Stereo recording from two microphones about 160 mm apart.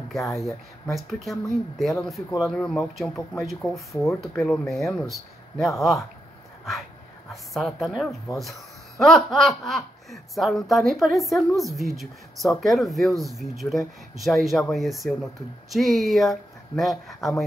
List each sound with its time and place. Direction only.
0.9 s speech: centre (ahead or behind)
7.5 s speech: centre (ahead or behind)